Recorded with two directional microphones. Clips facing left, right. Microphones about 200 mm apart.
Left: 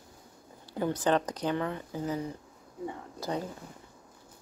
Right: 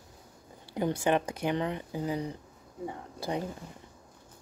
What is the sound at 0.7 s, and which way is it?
Speech, 20° right (ahead or behind).